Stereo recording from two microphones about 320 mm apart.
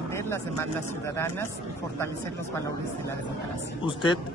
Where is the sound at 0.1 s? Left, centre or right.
Centre.